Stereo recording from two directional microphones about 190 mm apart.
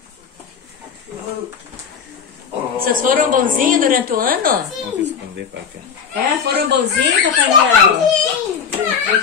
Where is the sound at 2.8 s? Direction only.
45° right (ahead or behind).